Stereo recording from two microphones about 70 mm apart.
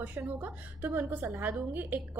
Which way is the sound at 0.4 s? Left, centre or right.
Right.